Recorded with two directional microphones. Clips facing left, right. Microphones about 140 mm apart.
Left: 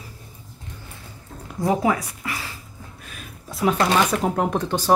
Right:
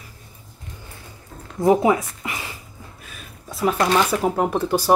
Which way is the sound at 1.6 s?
20° right (ahead or behind).